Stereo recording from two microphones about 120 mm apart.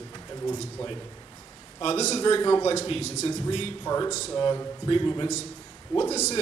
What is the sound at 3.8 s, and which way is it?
Speech, 30° left (ahead or behind).